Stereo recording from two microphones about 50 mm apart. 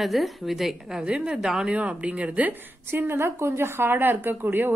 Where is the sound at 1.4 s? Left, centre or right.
Centre.